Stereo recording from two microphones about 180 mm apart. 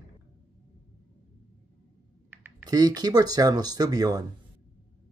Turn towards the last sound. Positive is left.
turn(degrees=-20)  # may be behind; listen again after turning